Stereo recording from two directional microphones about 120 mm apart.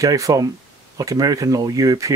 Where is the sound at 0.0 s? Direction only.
30° right (ahead or behind).